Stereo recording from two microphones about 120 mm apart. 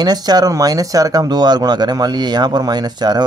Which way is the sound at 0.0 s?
35° right (ahead or behind).